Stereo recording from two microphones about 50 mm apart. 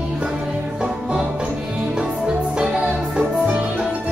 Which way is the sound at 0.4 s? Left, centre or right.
Centre.